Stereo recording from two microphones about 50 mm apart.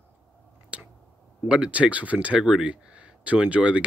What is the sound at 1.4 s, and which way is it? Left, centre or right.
Speech, right.